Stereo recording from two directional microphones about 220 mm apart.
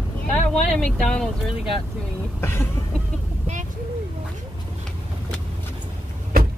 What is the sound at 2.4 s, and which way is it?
Cough, 10° left (ahead or behind).